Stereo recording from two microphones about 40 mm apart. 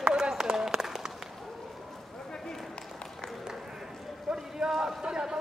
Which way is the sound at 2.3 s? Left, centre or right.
Centre.